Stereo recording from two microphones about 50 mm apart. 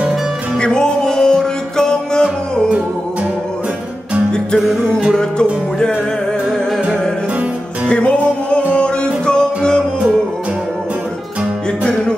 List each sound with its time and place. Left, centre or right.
0.6 s music: centre
5.1 s music: centre
7.9 s music: left